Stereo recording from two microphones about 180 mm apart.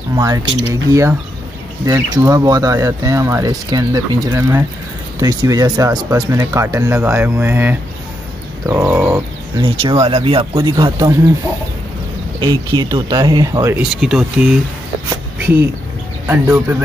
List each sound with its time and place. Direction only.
0.1 s speech: 20° right (ahead or behind)
9.6 s speech: 30° right (ahead or behind)
12.4 s speech: 25° right (ahead or behind)
13.7 s speech: 5° right (ahead or behind)
15.3 s speech: 10° right (ahead or behind)